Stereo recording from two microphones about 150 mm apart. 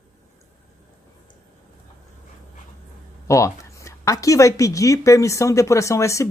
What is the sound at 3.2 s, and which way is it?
Speech, 20° left (ahead or behind).